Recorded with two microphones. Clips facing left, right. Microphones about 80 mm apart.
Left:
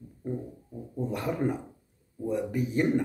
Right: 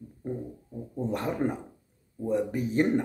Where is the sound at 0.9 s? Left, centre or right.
Right.